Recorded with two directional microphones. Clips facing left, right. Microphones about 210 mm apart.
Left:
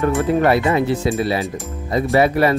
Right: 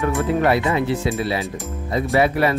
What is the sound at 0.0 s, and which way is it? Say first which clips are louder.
Speech: left 3 dB; 45° left (ahead or behind).